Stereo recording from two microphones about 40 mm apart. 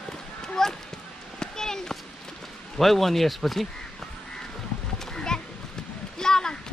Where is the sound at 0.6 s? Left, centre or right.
Centre.